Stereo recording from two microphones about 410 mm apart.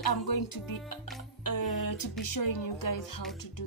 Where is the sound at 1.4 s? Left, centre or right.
Left.